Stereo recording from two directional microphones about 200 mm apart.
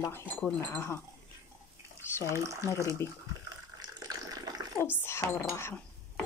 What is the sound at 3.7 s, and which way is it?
Bathtub, 20° right (ahead or behind).